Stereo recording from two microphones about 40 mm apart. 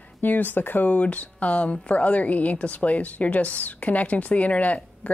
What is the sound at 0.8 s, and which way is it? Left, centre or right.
A woman's voice, left.